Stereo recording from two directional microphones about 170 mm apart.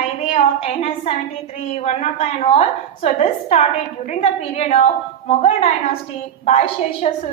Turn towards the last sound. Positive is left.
turn(degrees=40)  # may be behind; listen again after turning